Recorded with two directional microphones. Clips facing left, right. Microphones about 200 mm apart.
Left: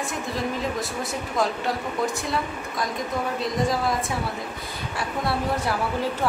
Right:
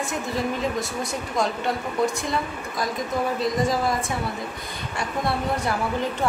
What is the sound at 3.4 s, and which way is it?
Speech, centre (ahead or behind).